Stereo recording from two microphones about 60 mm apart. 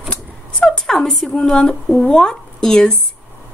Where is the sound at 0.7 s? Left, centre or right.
Centre.